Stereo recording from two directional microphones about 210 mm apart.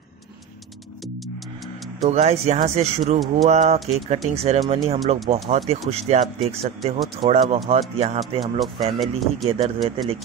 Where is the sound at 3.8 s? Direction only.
Centre (ahead or behind).